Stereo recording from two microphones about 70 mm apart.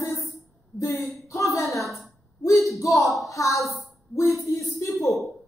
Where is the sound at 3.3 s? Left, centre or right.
Left.